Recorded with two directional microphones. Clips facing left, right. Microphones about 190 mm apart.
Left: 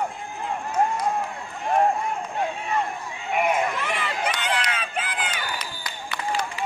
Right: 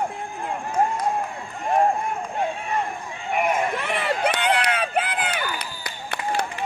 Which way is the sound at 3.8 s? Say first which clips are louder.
Right 4 dB; 60° right (ahead or behind).